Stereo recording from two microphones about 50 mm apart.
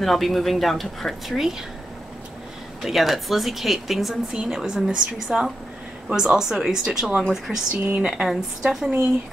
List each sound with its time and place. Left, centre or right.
0.0 s speech: centre
2.8 s speech: centre
7.2 s speech: centre
7.7 s speech: right
8.3 s speech: centre